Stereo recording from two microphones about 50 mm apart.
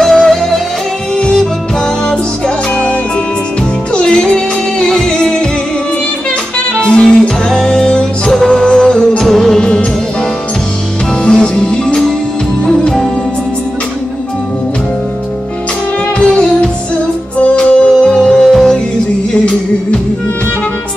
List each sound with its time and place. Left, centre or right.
0.0 s music: centre
2.7 s music: left
6.8 s music: centre
8.3 s music: centre
11.2 s music: centre
16.2 s music: centre
17.8 s music: centre